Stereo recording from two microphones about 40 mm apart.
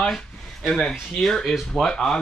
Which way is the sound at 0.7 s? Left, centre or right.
Centre.